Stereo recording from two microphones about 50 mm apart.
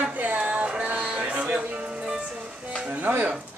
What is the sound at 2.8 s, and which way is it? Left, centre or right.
Music, right.